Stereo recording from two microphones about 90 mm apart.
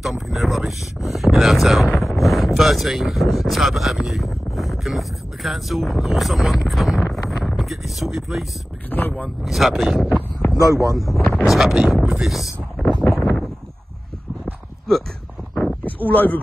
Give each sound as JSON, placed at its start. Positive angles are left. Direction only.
{"t": 0.0, "sound": "speech", "side_deg": 0}
{"t": 8.9, "sound": "speech", "side_deg": 20}
{"t": 9.4, "sound": "speech", "side_deg": 0}
{"t": 10.4, "sound": "a sound", "side_deg": 20}
{"t": 10.9, "sound": "speech", "side_deg": 0}
{"t": 12.7, "sound": "wind noise", "side_deg": 10}
{"t": 13.2, "sound": "a sound", "side_deg": 5}
{"t": 14.4, "sound": "dog", "side_deg": 5}
{"t": 15.8, "sound": "speech", "side_deg": 20}